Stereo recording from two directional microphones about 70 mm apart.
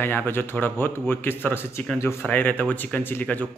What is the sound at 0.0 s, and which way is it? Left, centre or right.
A man's voice, left.